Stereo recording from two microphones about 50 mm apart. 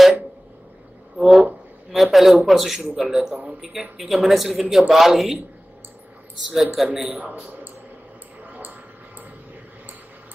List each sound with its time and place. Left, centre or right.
1.1 s a man's voice: centre
6.5 s a man's voice: centre
7.1 s a man's voice: right